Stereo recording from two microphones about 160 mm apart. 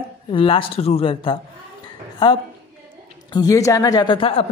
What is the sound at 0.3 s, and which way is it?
A woman's voice, 35° left (ahead or behind).